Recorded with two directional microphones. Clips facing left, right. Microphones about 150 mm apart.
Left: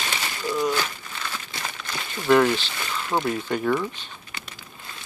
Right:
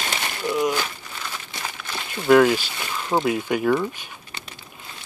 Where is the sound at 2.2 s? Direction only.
10° right (ahead or behind).